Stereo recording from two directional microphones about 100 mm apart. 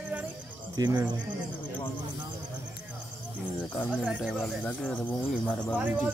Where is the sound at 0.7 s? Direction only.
40° right (ahead or behind).